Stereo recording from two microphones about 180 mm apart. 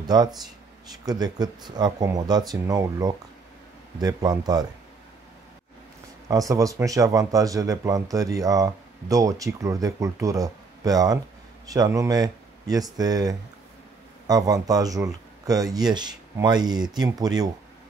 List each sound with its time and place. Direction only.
0.0 s speech: 20° right (ahead or behind)
6.2 s speech: 20° right (ahead or behind)